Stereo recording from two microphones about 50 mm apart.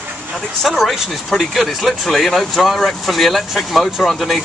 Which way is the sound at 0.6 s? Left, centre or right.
Centre.